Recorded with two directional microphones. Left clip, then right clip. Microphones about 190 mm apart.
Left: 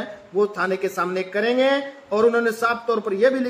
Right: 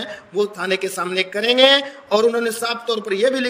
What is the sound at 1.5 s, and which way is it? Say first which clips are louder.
A man's voice: right 8 dB; 45° right (ahead or behind).